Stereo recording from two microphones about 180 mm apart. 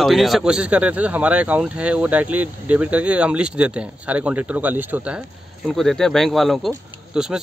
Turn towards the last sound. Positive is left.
turn(degrees=-5)  # may be behind; listen again after turning